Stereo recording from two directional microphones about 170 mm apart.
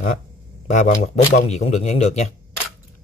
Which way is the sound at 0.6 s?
45° left (ahead or behind).